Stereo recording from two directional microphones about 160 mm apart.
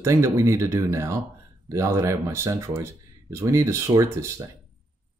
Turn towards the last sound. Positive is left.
turn(degrees=-20)  # may be behind; listen again after turning